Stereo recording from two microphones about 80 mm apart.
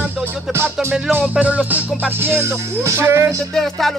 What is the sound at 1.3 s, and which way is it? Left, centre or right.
Music, centre.